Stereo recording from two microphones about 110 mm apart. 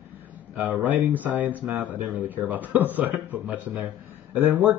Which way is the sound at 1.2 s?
15° right (ahead or behind).